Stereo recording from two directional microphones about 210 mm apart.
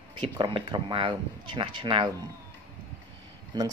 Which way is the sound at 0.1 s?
25° right (ahead or behind).